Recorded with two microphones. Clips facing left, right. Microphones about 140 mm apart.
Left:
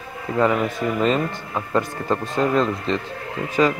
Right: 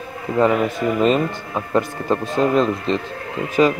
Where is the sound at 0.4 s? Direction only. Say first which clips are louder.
Right 3 dB; 15° right (ahead or behind).